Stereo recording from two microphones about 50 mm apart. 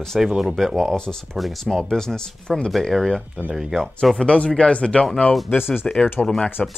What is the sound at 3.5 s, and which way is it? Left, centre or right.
Speech, centre.